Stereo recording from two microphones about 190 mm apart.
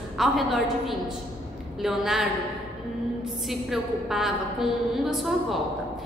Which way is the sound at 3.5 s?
Centre (ahead or behind).